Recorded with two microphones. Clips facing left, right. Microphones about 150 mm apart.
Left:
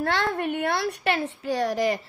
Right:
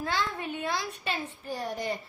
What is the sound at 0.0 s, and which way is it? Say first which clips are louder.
A woman's voice: left 6 dB; 65° left (ahead or behind).